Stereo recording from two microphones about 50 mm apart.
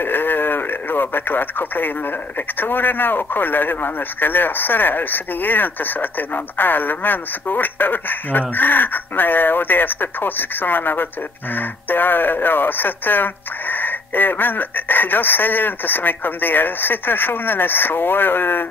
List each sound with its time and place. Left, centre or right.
0.0 s radio: left
2.6 s speech: left